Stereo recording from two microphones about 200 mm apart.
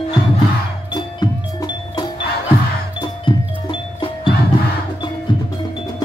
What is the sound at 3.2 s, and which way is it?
Music, 25° left (ahead or behind).